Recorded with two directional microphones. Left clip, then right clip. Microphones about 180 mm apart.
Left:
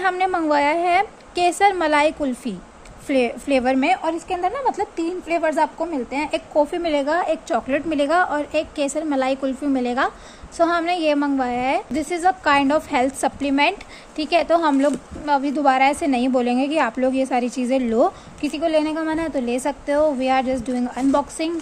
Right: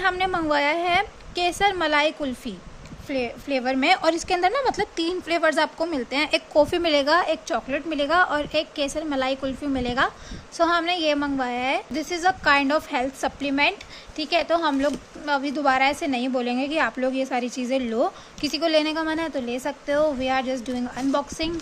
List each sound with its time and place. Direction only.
0.0 s a woman's voice: centre (ahead or behind)
3.1 s speech: 15° left (ahead or behind)
4.0 s a woman's voice: 25° right (ahead or behind); by 18.1 s 5° left (ahead or behind)
18.4 s a woman's voice: 10° right (ahead or behind)